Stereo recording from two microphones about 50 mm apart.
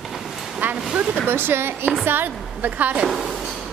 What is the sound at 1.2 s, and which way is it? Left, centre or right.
A woman's voice, right.